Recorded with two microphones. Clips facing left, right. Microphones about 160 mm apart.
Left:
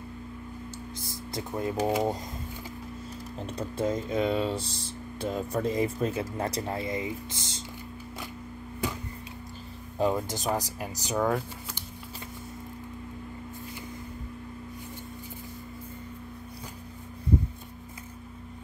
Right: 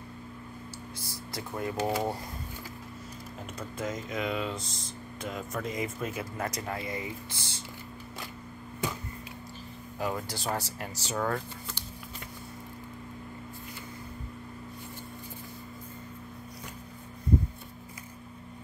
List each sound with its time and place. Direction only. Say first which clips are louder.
1.3 s speech: left 3 dB; 20° left (ahead or behind)
3.5 s speech: left 6 dB; 30° left (ahead or behind)
9.9 s speech: left 6 dB; 20° left (ahead or behind)